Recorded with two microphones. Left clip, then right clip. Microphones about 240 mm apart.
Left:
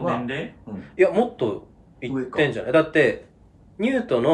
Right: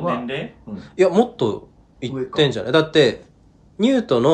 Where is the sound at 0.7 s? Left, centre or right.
Centre.